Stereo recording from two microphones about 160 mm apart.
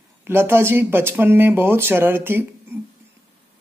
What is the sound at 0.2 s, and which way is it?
Speech, 15° right (ahead or behind).